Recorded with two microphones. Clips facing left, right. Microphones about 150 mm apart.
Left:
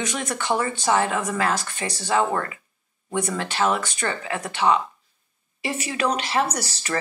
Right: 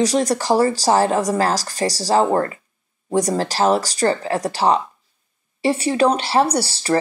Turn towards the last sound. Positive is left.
turn(degrees=-30)  # may be behind; listen again after turning